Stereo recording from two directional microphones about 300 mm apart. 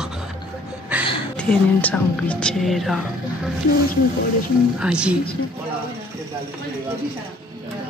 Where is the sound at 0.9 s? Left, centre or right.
Centre.